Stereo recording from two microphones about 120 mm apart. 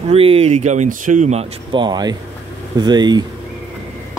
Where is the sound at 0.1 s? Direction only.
55° right (ahead or behind); by 1.4 s 85° right.